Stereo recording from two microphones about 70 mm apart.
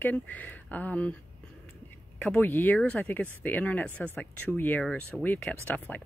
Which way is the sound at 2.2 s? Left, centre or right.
Left.